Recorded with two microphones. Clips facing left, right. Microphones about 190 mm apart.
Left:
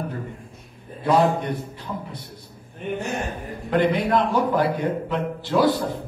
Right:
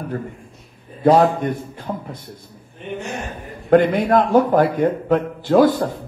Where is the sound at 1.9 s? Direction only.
50° right (ahead or behind).